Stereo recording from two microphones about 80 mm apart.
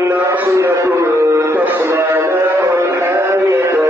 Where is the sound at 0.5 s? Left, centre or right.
Right.